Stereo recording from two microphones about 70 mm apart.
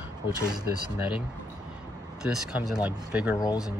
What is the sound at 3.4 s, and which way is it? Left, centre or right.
Speech, left.